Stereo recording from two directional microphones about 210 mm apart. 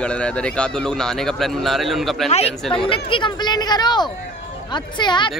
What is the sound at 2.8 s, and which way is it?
Speech, 25° left (ahead or behind).